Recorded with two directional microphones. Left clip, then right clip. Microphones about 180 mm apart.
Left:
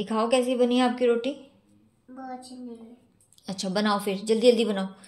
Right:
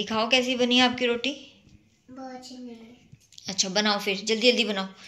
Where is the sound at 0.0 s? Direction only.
15° left (ahead or behind).